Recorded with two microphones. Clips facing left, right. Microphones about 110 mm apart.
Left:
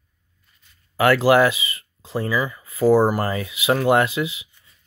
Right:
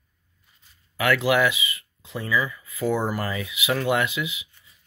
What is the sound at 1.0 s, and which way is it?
Speech, 35° left (ahead or behind).